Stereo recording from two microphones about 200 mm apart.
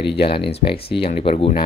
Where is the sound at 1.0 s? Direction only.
30° left (ahead or behind).